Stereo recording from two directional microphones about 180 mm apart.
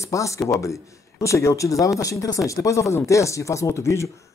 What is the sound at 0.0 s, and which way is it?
Speech, 15° left (ahead or behind).